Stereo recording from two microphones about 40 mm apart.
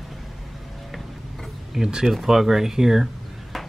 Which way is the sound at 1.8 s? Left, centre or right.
Centre.